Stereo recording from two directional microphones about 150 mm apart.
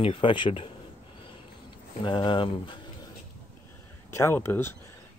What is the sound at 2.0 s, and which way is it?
Speech, 35° left (ahead or behind).